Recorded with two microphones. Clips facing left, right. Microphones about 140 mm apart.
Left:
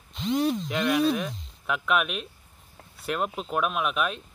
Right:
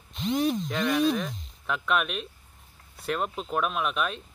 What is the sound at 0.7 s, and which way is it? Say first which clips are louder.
Speech: left 1 dB; 5° left (ahead or behind).